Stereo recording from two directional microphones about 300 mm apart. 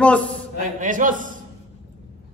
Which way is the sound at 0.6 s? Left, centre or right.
Right.